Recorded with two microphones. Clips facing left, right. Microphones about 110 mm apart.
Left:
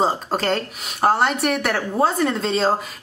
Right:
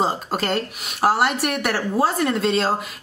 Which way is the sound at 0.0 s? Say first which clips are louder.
Left 2 dB; centre (ahead or behind).